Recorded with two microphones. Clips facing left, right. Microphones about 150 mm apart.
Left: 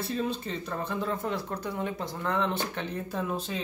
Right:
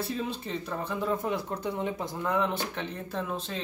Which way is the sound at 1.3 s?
20° right (ahead or behind).